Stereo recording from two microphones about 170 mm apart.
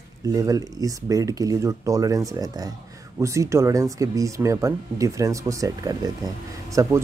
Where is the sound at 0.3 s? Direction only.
20° right (ahead or behind).